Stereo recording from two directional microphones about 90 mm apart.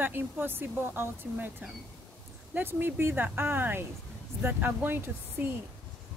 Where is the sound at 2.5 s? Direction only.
20° right (ahead or behind).